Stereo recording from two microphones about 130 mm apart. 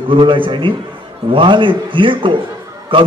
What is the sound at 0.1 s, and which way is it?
A man's voice, 40° right (ahead or behind).